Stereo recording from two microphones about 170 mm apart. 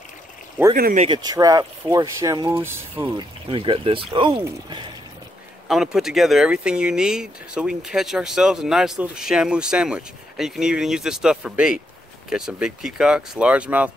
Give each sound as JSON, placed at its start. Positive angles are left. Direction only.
{"t": 0.7, "sound": "speech", "side_deg": -60}
{"t": 1.0, "sound": "speech", "side_deg": -25}
{"t": 3.2, "sound": "speech", "side_deg": -30}
{"t": 5.7, "sound": "speech", "side_deg": 0}